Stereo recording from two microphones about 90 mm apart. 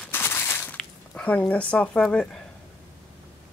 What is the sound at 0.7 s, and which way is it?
Speech, 15° left (ahead or behind).